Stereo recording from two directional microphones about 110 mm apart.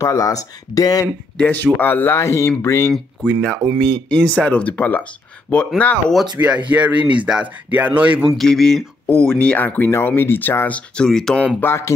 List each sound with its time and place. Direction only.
0.0 s speech: 30° left (ahead or behind)
1.4 s speech: 15° left (ahead or behind)
3.3 s speech: 5° left (ahead or behind)
6.3 s speech: 10° right (ahead or behind)
8.4 s speech: 5° left (ahead or behind)
11.0 s speech: 5° left (ahead or behind)
11.6 s speech: 25° left (ahead or behind)